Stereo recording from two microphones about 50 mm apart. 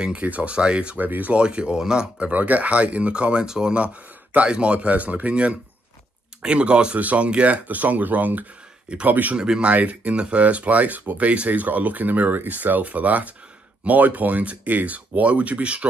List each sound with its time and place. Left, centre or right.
0.0 s speech: right
0.9 s speech: right
1.3 s speech: right
2.1 s speech: right
9.4 s speech: centre
9.7 s speech: right